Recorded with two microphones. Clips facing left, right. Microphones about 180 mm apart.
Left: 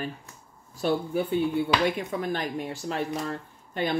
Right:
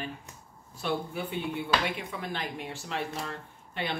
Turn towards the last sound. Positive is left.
turn(degrees=40)  # may be behind; listen again after turning